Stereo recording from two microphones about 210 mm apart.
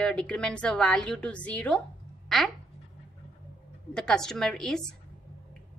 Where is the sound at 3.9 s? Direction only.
5° left (ahead or behind).